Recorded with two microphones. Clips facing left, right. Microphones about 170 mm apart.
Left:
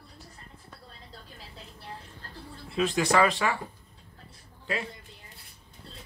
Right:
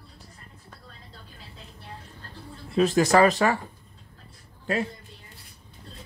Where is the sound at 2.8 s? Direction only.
40° right (ahead or behind).